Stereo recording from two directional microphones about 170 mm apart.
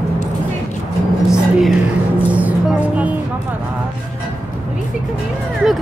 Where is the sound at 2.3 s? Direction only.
10° right (ahead or behind).